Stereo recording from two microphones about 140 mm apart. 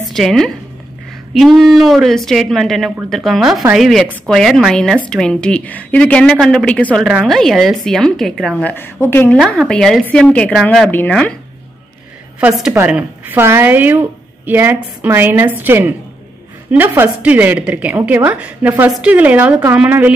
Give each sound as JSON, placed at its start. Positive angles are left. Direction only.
{"t": 0.1, "sound": "a woman's voice", "side_deg": 0}
{"t": 8.6, "sound": "a woman's voice", "side_deg": 15}
{"t": 9.6, "sound": "a woman's voice", "side_deg": 0}
{"t": 12.4, "sound": "a woman's voice", "side_deg": -5}